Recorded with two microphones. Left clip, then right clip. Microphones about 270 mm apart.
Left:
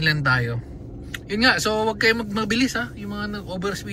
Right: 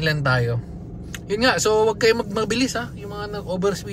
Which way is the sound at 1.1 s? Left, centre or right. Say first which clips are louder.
Even; centre.